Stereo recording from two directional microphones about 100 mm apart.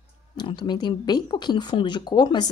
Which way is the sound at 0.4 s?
50° left (ahead or behind).